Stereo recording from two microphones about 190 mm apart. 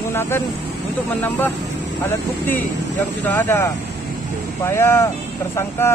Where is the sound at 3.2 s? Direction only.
10° left (ahead or behind).